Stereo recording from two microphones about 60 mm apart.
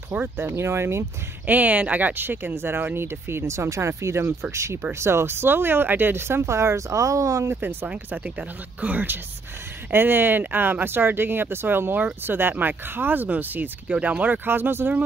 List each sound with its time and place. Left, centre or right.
0.1 s speech: right
0.5 s speech: right
1.4 s speech: right
7.8 s speech: right